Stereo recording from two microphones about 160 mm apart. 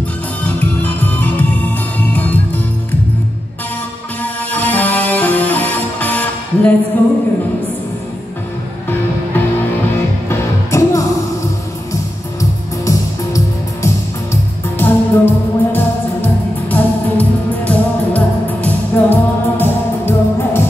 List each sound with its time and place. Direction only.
0.6 s music: 10° left (ahead or behind)
4.2 s music: 10° left (ahead or behind)
10.3 s music: 20° left (ahead or behind)